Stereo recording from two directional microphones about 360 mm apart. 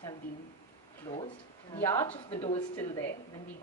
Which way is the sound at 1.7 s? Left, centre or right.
Centre.